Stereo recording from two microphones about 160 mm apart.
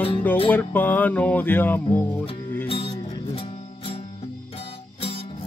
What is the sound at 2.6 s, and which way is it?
Music, 35° left (ahead or behind).